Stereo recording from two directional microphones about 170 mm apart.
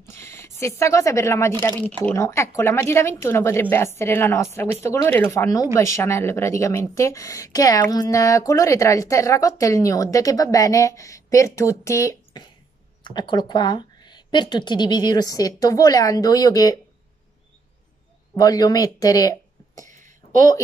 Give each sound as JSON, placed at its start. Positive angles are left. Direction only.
{"t": 0.1, "sound": "a woman's voice", "side_deg": 15}
{"t": 18.3, "sound": "speech", "side_deg": 20}